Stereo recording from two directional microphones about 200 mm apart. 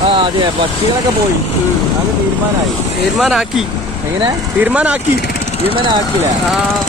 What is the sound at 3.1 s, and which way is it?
Speech, centre (ahead or behind).